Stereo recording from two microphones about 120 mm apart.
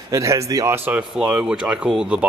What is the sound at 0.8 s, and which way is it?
A man's voice, 10° right (ahead or behind).